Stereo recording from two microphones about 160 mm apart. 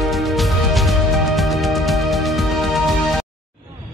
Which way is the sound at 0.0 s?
Centre (ahead or behind).